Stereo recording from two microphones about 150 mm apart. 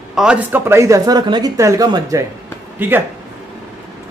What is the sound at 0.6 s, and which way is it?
Speech, 20° right (ahead or behind).